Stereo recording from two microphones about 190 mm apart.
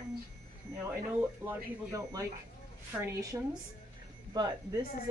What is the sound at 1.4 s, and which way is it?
Speech, 15° right (ahead or behind).